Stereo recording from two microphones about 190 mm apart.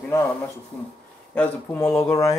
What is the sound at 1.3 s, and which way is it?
Speech, 10° left (ahead or behind).